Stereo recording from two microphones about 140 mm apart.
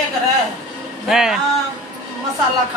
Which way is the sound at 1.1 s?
5° right (ahead or behind).